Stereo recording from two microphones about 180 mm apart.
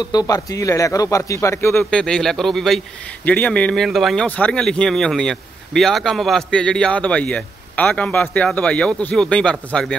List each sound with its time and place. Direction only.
0.0 s speech: 20° left (ahead or behind); by 9.9 s 5° left (ahead or behind)